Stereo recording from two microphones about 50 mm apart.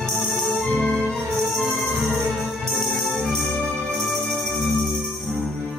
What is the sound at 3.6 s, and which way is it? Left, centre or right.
Music, centre.